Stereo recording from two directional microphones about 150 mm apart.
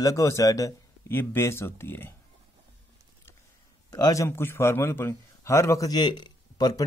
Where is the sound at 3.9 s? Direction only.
20° left (ahead or behind).